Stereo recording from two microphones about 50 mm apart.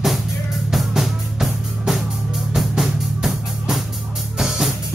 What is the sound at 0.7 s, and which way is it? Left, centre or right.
Music, centre.